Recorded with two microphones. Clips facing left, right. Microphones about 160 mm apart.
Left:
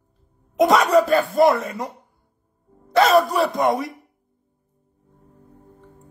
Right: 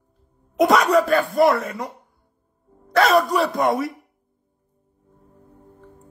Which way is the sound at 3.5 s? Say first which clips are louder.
Even; 25° left (ahead or behind).